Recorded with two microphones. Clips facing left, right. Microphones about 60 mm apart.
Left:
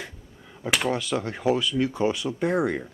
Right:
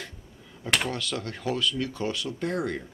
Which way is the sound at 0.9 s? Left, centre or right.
Centre.